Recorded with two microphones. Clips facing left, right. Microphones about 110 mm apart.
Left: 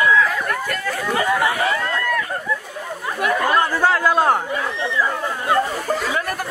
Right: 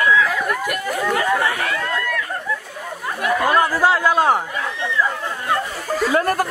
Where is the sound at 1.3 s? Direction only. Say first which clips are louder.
Left 1 dB; 15° left (ahead or behind).